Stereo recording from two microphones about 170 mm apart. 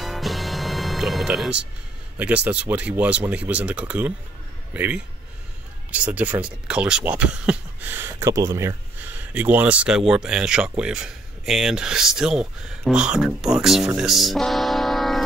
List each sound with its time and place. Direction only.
0.0 s music: centre (ahead or behind)
2.1 s speech: 10° right (ahead or behind)